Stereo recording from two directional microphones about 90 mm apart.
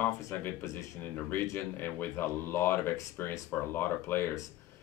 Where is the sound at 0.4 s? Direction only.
20° left (ahead or behind).